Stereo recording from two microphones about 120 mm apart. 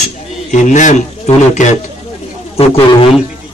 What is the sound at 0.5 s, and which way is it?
A man's voice, 90° left.